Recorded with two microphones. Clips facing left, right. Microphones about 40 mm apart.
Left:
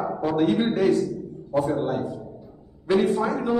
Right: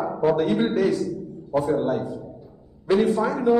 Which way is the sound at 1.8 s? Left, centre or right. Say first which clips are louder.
Right 2 dB; centre.